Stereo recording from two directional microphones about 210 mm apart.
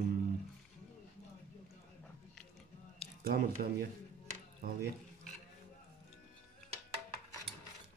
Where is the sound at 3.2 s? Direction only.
45° right (ahead or behind).